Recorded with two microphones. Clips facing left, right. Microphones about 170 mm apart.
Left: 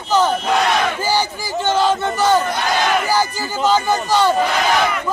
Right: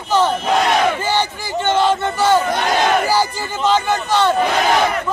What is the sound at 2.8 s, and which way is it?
Battle cry, 30° right (ahead or behind).